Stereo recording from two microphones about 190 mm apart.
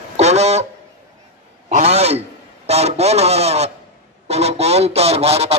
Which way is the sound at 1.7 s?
35° right (ahead or behind).